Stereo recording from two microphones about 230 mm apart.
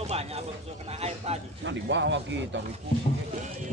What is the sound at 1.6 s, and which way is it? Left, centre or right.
A man's voice, right.